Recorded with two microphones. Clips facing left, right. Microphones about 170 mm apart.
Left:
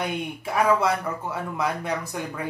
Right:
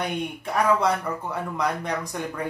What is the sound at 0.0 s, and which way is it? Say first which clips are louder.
Speech: even; 5° left (ahead or behind).